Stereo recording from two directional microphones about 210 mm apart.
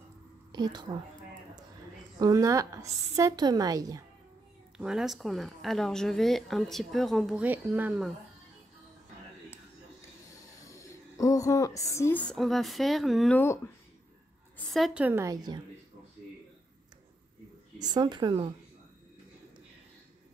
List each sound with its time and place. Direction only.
0.5 s a woman's voice: 20° right (ahead or behind)
2.1 s a woman's voice: 15° right (ahead or behind)
4.7 s a woman's voice: 5° right (ahead or behind)
10.2 s speech: 15° left (ahead or behind); by 13.4 s centre (ahead or behind)
14.7 s a woman's voice: 5° right (ahead or behind); by 15.6 s 20° right (ahead or behind)
17.7 s a woman's voice: 20° right (ahead or behind)